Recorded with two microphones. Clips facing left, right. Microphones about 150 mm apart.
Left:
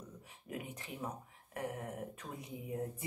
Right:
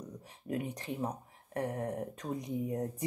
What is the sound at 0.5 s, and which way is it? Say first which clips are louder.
Speech: right 8 dB; 35° right (ahead or behind).